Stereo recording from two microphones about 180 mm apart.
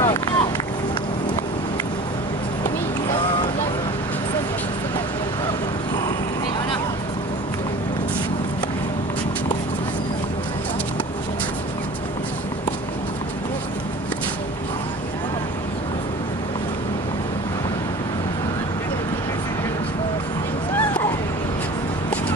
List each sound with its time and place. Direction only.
0.0 s run: 25° left (ahead or behind)
3.1 s boat: 25° left (ahead or behind)